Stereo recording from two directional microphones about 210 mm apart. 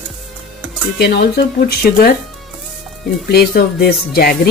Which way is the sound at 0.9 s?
50° left (ahead or behind).